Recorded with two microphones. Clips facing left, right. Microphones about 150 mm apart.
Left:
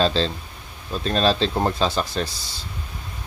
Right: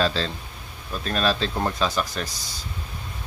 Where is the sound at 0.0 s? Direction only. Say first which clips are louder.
Left 3 dB; 30° left (ahead or behind).